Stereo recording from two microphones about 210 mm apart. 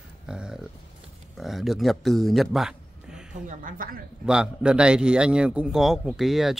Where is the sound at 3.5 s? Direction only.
40° right (ahead or behind).